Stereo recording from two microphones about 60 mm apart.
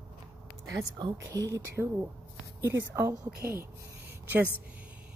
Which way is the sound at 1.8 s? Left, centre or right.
Right.